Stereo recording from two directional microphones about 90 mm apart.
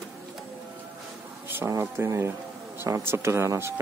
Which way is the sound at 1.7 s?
30° right (ahead or behind).